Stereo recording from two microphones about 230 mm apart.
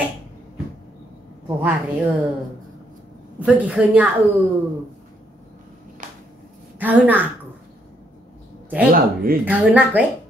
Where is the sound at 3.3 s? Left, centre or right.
Centre.